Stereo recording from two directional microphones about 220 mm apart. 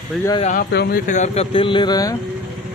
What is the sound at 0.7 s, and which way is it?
Speech, 40° left (ahead or behind).